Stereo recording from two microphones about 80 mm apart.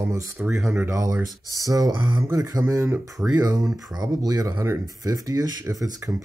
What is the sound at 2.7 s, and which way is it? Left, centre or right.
Speech, right.